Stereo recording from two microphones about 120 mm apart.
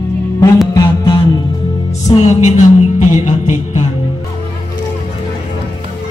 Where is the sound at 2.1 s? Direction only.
45° left (ahead or behind).